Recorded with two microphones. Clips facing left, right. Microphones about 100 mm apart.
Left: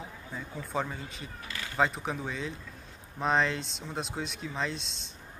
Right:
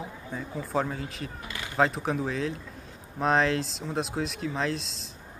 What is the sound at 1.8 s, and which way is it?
Speech, centre (ahead or behind).